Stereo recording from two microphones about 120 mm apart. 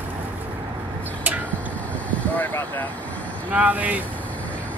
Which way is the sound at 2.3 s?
15° left (ahead or behind).